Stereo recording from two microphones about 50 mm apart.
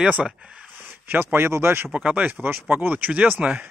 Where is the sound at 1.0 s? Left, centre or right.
Right.